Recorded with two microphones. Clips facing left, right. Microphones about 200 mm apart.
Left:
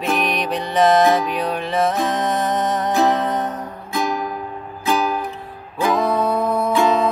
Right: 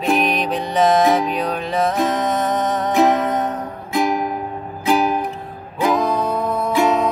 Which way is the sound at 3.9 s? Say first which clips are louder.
Right 4 dB; 20° right (ahead or behind).